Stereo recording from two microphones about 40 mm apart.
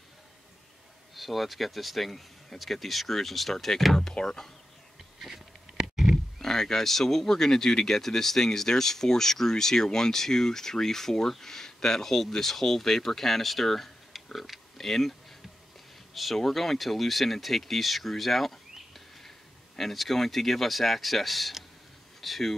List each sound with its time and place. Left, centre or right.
1.1 s speech: centre
4.1 s speech: left
5.2 s a sound: centre
6.4 s speech: centre
16.2 s speech: centre